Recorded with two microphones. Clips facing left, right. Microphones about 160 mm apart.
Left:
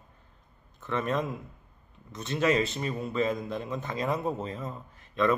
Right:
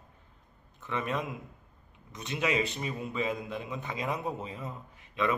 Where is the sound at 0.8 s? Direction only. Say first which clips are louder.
Left 3 dB; 15° right (ahead or behind).